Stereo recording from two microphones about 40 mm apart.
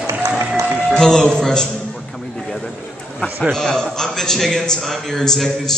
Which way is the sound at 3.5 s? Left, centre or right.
Centre.